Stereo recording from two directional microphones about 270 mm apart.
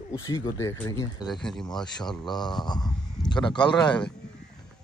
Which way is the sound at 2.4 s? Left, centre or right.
Centre.